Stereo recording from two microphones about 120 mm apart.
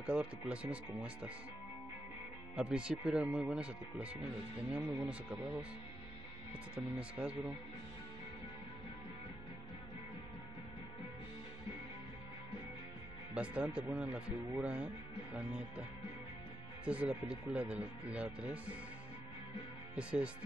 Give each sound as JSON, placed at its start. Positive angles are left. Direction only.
{"t": 0.0, "sound": "speech", "side_deg": -10}
{"t": 2.5, "sound": "speech", "side_deg": -10}
{"t": 6.7, "sound": "speech", "side_deg": -10}
{"t": 13.3, "sound": "speech", "side_deg": -10}
{"t": 16.8, "sound": "speech", "side_deg": -10}
{"t": 20.0, "sound": "speech", "side_deg": -10}